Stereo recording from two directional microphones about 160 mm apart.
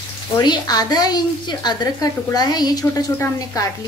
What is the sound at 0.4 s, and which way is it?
A woman's voice, 25° left (ahead or behind).